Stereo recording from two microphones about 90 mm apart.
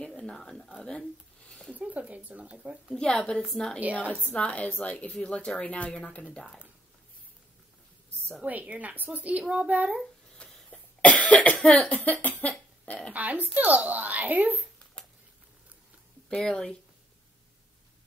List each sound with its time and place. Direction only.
0.0 s speech: 10° left (ahead or behind)
1.7 s speech: 15° right (ahead or behind)
2.9 s a woman's voice: 5° left (ahead or behind)
4.3 s a woman's voice: 15° left (ahead or behind)
8.5 s speech: 15° right (ahead or behind)
10.3 s cough: 15° left (ahead or behind)
11.7 s speech: 15° left (ahead or behind)
13.1 s speech: 15° right (ahead or behind)
16.3 s a woman's voice: 10° left (ahead or behind)